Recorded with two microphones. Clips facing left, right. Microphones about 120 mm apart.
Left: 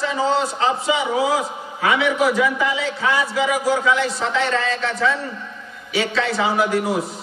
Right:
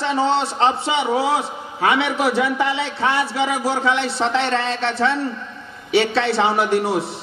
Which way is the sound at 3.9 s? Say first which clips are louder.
Left 1 dB; 65° right (ahead or behind).